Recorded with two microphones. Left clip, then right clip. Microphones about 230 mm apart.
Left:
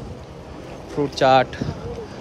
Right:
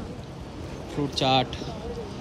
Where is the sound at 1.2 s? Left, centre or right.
Centre.